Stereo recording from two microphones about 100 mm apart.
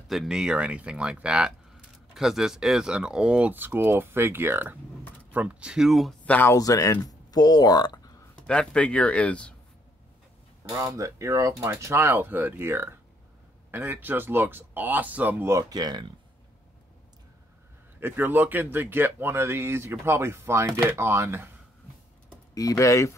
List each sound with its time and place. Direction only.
0.1 s speech: 5° right (ahead or behind)
6.2 s speech: 15° left (ahead or behind)
6.5 s speech: 35° left (ahead or behind)
8.4 s speech: 10° left (ahead or behind)
10.7 s speech: 35° right (ahead or behind)
15.7 s speech: 45° right (ahead or behind)
18.0 s speech: 20° right (ahead or behind)
22.5 s speech: 35° left (ahead or behind)